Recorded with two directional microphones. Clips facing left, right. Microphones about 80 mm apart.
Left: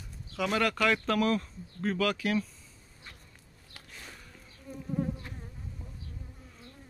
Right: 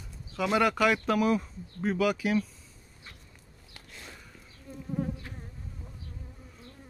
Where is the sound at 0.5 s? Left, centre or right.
Centre.